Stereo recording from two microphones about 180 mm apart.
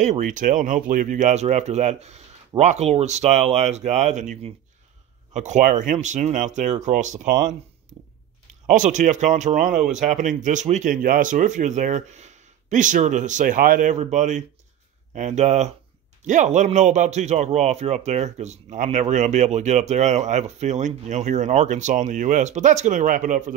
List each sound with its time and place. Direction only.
0.0 s speech: 45° right (ahead or behind)
8.6 s speech: 45° right (ahead or behind)